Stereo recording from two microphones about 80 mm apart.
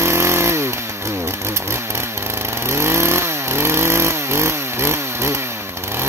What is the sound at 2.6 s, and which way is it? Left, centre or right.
Chainsaw, right.